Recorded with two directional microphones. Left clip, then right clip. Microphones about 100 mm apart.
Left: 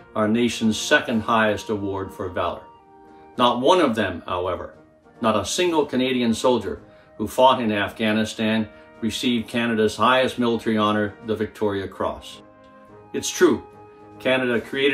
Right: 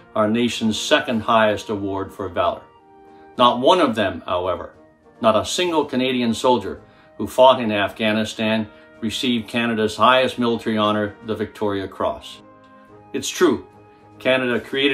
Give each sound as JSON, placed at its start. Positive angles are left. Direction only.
{"t": 0.1, "sound": "speech", "side_deg": -15}